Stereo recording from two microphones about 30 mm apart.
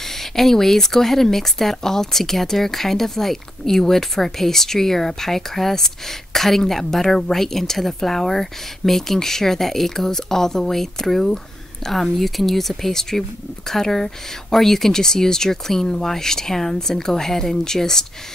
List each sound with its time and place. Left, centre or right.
0.0 s speech: centre
11.9 s speech: centre